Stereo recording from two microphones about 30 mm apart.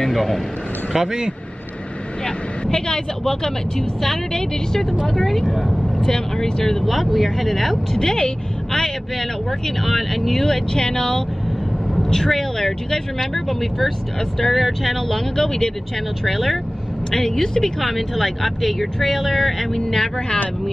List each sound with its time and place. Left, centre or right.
0.0 s a man's voice: centre
0.9 s speech: right
2.2 s speech: left; by 5.8 s centre
5.8 s speech: centre
7.7 s a woman's voice: centre
9.8 s speech: centre
10.4 s speech: centre
16.3 s speech: centre
17.1 s speech: centre